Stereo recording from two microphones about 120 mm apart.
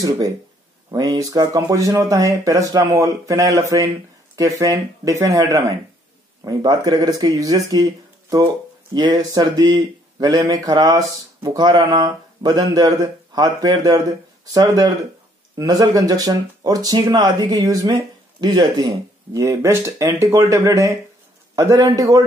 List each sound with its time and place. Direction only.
0.9 s speech: 30° right (ahead or behind)